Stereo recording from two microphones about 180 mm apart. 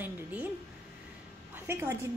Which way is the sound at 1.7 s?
15° right (ahead or behind).